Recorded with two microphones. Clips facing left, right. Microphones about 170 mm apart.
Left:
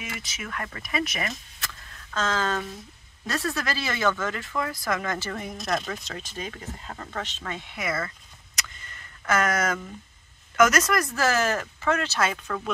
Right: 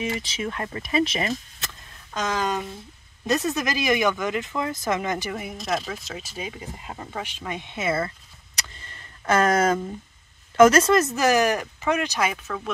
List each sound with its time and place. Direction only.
0.0 s speech: 30° right (ahead or behind)
1.6 s a sound: 15° right (ahead or behind)
3.3 s speech: 20° right (ahead or behind)
5.3 s speech: 5° right (ahead or behind); by 8.1 s 25° right (ahead or behind)
8.5 s vehicle: 30° right (ahead or behind)
10.5 s speech: 30° right (ahead or behind); by 12.7 s 5° right (ahead or behind)